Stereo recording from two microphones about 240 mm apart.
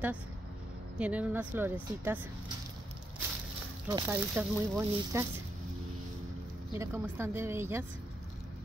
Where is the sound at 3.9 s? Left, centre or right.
Centre.